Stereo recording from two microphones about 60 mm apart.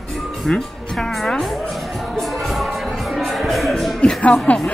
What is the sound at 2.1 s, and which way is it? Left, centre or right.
Music, centre.